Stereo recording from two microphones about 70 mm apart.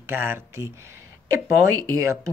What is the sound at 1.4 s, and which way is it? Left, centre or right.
Speech, right.